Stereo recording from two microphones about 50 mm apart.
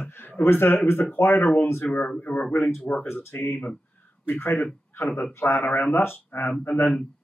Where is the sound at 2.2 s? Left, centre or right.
Left.